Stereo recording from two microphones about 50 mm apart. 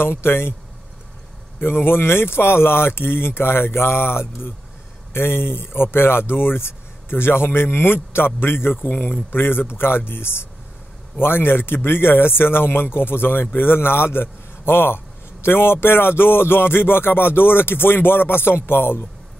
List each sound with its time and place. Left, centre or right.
0.0 s speech: left
1.6 s speech: left